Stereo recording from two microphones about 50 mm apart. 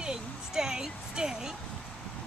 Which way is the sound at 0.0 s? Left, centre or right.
Centre.